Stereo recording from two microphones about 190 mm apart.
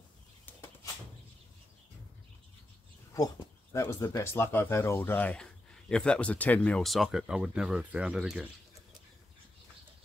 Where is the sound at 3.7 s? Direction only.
15° left (ahead or behind); by 8.5 s 5° right (ahead or behind).